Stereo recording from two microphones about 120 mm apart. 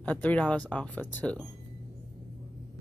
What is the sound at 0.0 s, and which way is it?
Speech, 15° left (ahead or behind).